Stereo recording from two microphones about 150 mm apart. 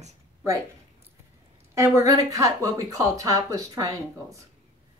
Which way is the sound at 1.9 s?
25° right (ahead or behind).